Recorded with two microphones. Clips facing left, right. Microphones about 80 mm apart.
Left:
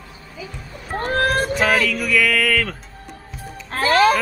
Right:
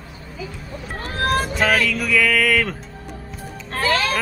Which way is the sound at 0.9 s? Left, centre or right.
Left.